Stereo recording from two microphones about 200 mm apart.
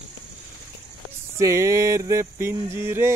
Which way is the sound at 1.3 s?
15° right (ahead or behind).